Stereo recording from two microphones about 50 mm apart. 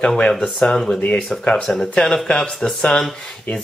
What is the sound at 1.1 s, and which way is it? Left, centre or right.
Speech, left.